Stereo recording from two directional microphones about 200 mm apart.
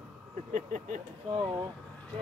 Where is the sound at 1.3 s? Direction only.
20° right (ahead or behind).